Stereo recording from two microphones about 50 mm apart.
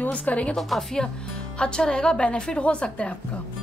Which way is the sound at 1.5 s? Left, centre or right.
Centre.